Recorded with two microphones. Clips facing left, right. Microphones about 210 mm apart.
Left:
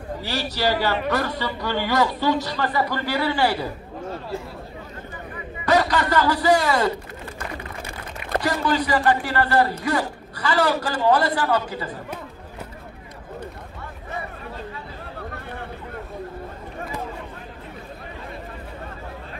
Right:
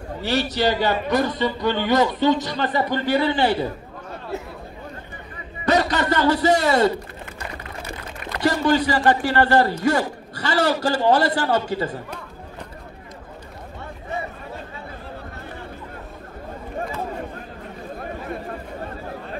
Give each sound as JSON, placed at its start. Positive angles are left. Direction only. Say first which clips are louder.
{"t": 0.2, "sound": "a man's voice", "louder": "right 5 dB", "side_deg": -20}
{"t": 5.7, "sound": "a man's voice", "louder": "even", "side_deg": -25}
{"t": 8.4, "sound": "a man's voice", "louder": "right 4 dB", "side_deg": -25}